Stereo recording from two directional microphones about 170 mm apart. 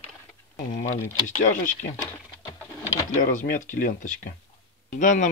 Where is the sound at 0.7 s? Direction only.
50° left (ahead or behind).